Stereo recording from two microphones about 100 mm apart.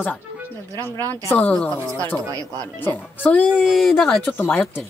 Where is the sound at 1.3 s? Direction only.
15° left (ahead or behind).